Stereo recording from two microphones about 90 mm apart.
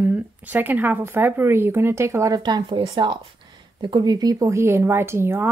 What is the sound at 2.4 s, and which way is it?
Speech, 60° right (ahead or behind).